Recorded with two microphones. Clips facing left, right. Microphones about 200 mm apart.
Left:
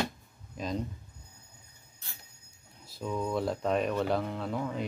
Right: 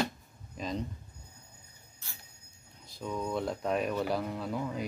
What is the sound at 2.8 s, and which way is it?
Speech, 5° left (ahead or behind).